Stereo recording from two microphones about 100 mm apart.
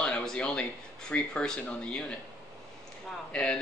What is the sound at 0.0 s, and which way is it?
Speech, 10° left (ahead or behind).